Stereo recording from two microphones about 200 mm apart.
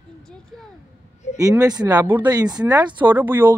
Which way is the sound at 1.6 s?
20° right (ahead or behind).